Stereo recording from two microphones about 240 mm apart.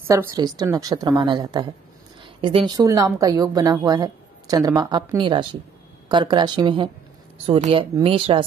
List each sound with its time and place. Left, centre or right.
0.0 s a woman's voice: centre